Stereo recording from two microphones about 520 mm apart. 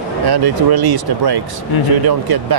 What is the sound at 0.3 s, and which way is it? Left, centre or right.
Speech, right.